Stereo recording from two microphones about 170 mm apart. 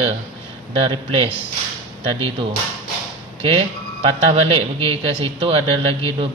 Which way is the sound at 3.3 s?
30° right (ahead or behind).